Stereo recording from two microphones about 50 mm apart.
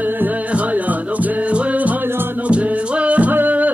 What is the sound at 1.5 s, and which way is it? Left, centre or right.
Music, right.